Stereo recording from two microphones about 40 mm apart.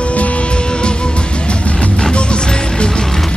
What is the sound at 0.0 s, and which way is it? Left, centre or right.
Music, left.